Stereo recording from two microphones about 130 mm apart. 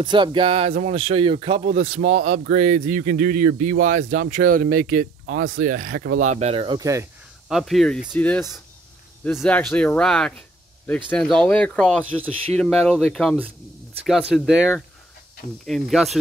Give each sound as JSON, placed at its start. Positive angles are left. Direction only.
{"t": 0.0, "sound": "speech", "side_deg": -35}
{"t": 6.5, "sound": "speech", "side_deg": -40}
{"t": 6.8, "sound": "speech", "side_deg": -25}
{"t": 7.4, "sound": "speech", "side_deg": 0}
{"t": 8.1, "sound": "speech", "side_deg": 15}